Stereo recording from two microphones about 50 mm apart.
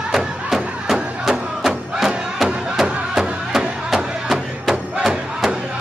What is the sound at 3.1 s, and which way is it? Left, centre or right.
Music, centre.